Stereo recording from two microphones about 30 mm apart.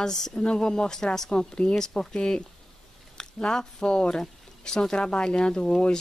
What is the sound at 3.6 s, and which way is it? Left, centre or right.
A woman's voice, left.